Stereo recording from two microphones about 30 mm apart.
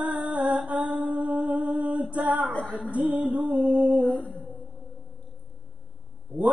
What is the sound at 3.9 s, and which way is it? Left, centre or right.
Music, right.